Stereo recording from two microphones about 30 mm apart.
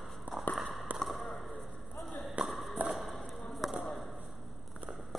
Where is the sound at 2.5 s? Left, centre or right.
Centre.